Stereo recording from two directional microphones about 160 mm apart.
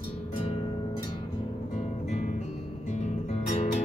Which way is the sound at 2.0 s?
50° left (ahead or behind).